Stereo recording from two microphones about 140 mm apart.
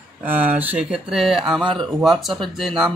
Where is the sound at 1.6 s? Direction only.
35° right (ahead or behind).